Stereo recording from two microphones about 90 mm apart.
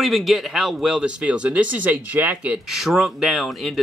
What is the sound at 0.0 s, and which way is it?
Speech, centre (ahead or behind).